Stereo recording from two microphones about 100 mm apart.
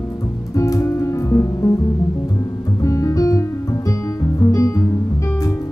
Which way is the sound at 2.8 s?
30° left (ahead or behind).